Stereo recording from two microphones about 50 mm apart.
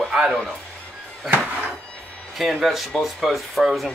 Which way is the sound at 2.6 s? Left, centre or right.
Centre.